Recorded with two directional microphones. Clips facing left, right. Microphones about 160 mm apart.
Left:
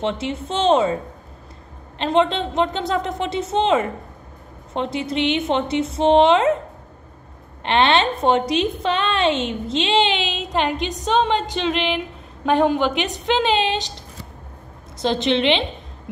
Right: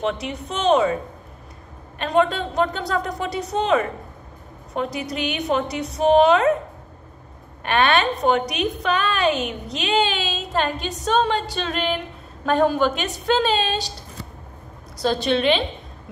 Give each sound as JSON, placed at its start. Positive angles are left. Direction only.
{"t": 0.0, "sound": "a woman's voice", "side_deg": 25}
{"t": 2.0, "sound": "a woman's voice", "side_deg": 25}
{"t": 7.6, "sound": "a woman's voice", "side_deg": 25}
{"t": 15.0, "sound": "a woman's voice", "side_deg": 20}